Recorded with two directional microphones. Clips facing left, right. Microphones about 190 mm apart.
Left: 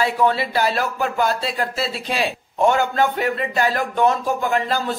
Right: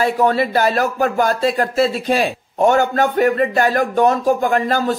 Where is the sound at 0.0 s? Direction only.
45° right (ahead or behind).